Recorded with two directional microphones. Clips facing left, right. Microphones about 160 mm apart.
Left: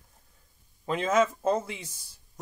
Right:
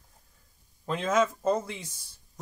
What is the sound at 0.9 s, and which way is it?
Speech, 5° left (ahead or behind).